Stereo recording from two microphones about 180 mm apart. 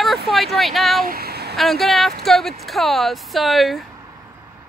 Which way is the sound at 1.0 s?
55° right (ahead or behind).